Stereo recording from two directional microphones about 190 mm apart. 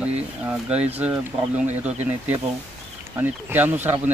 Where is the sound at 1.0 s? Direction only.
10° right (ahead or behind).